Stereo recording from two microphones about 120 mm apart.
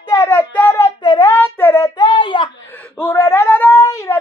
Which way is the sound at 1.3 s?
20° left (ahead or behind).